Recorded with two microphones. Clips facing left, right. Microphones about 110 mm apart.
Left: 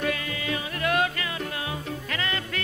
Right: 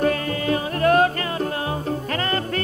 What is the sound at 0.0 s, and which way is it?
Music, 40° right (ahead or behind).